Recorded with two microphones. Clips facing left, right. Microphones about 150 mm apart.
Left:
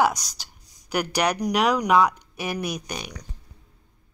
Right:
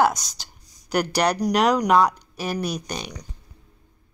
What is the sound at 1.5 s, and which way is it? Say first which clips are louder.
Speech: right 2 dB; 5° left (ahead or behind).